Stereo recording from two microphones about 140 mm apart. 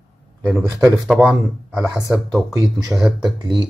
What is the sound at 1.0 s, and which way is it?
Speech, 5° right (ahead or behind).